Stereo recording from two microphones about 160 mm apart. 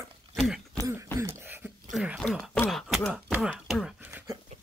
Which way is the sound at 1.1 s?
15° right (ahead or behind).